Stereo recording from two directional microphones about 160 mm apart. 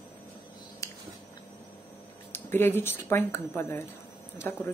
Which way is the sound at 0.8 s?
20° left (ahead or behind).